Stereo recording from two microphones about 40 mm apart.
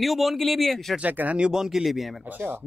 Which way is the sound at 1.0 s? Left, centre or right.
Right.